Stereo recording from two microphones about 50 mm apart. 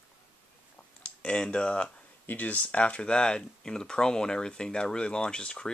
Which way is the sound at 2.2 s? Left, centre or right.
Left.